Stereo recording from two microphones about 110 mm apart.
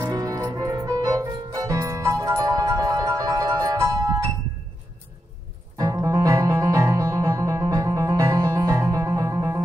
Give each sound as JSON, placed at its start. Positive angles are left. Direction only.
{"t": 0.1, "sound": "music", "side_deg": -30}
{"t": 5.8, "sound": "music", "side_deg": -30}